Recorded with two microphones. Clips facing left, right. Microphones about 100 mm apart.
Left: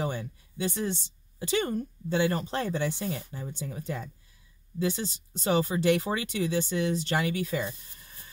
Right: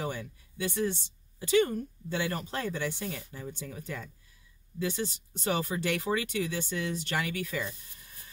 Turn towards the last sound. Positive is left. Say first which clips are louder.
# left 4 dB
turn(degrees=25)  # may be behind; listen again after turning